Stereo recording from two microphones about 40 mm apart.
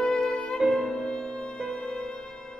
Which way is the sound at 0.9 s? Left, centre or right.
Centre.